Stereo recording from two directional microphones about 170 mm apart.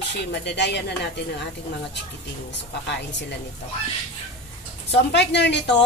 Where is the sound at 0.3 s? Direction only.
85° left.